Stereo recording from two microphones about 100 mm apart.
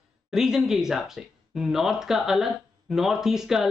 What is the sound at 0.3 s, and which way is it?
Speech, 5° right (ahead or behind).